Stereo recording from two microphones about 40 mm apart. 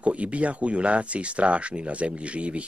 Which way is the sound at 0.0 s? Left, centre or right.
Right.